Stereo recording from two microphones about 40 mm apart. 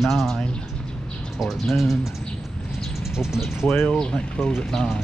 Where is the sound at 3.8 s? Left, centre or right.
Left.